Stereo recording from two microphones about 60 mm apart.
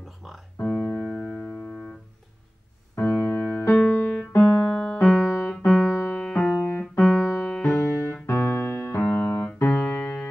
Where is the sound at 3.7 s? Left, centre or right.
Left.